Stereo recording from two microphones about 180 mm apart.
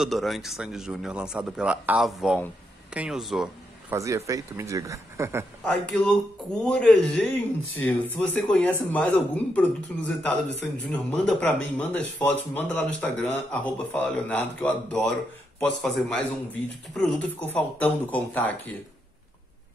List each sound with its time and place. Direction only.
0.0 s speech: centre (ahead or behind)
3.9 s speech: 15° right (ahead or behind)
5.7 s speech: 5° left (ahead or behind)